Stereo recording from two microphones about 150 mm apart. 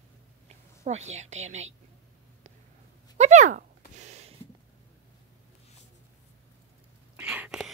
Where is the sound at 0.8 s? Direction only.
50° right (ahead or behind).